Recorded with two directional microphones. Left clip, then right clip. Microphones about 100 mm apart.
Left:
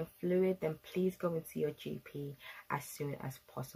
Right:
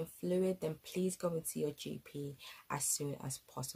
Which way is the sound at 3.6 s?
Centre (ahead or behind).